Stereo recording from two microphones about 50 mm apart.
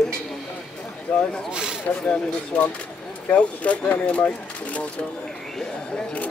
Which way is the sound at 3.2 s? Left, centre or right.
Left.